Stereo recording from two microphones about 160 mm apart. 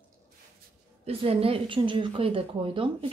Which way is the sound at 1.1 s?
40° right (ahead or behind).